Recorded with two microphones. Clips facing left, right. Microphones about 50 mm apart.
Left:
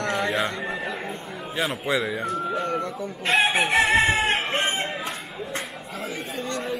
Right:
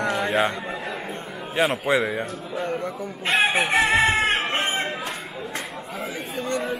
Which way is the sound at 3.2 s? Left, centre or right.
Centre.